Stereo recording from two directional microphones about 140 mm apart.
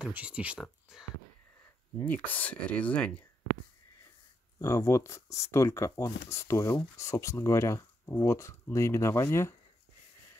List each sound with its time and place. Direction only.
0.0 s speech: 5° right (ahead or behind)
2.0 s speech: 10° left (ahead or behind)
4.6 s speech: 20° left (ahead or behind)